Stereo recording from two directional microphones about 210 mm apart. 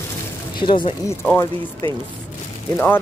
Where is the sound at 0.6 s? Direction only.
25° left (ahead or behind).